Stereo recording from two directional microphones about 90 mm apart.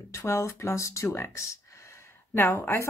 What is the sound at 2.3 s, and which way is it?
Speech, 25° left (ahead or behind).